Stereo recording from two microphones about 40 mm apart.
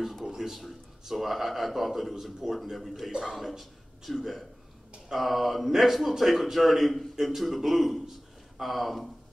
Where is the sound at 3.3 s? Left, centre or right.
Centre.